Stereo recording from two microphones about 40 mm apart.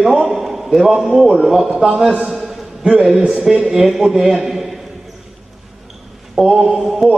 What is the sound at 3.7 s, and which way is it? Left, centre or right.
A man's voice, centre.